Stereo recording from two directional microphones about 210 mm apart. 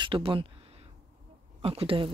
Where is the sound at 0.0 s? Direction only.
25° right (ahead or behind).